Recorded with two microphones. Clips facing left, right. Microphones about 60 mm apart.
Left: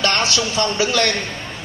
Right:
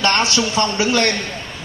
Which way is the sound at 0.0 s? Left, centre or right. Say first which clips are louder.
Right 2 dB; right.